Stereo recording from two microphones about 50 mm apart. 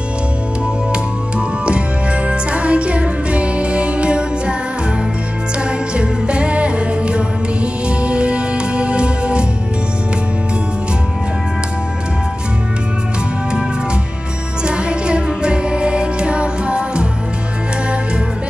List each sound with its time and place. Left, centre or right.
2.2 s music: right
5.9 s music: right
14.6 s music: centre